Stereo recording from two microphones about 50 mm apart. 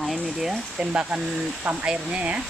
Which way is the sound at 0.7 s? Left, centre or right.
Right.